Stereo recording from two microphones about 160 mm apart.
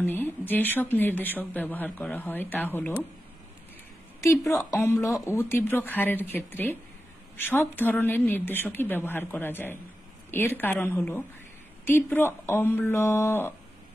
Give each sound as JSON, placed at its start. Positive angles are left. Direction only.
{"t": 0.0, "sound": "speech", "side_deg": 10}
{"t": 4.2, "sound": "a woman's voice", "side_deg": 20}